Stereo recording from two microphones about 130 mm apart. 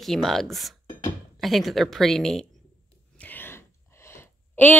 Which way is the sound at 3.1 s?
15° left (ahead or behind).